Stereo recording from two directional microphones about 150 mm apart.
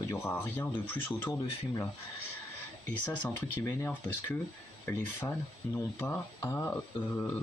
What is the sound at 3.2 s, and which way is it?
Speech, 15° left (ahead or behind).